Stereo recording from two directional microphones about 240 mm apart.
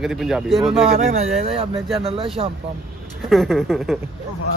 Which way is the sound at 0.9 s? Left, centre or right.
Right.